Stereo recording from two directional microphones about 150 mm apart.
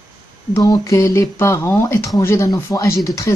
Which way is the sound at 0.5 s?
20° left (ahead or behind).